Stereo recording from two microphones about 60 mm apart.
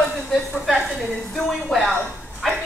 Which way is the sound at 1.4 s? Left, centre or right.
Centre.